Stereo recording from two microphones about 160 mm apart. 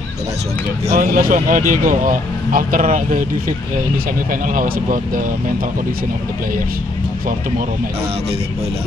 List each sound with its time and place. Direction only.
0.9 s speech: 55° right (ahead or behind)
4.3 s speech: 60° right (ahead or behind)